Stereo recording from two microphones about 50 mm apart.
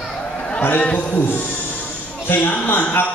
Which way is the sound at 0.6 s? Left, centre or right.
Left.